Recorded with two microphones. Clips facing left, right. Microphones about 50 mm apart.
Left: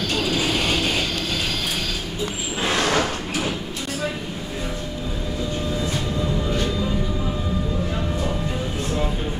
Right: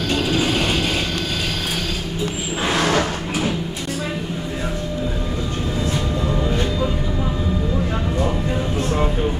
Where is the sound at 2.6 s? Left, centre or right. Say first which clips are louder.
Right 2 dB; centre.